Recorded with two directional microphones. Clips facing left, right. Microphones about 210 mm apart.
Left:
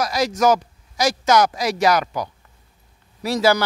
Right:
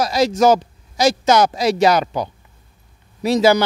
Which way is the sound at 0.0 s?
25° right (ahead or behind).